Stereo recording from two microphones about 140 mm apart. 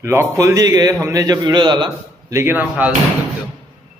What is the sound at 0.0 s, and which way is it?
A man's voice, 20° right (ahead or behind).